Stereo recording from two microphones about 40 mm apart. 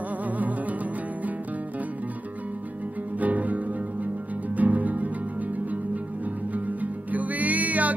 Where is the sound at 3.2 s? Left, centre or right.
Right.